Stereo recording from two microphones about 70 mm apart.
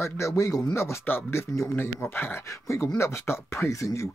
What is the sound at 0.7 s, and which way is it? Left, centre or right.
Speech, left.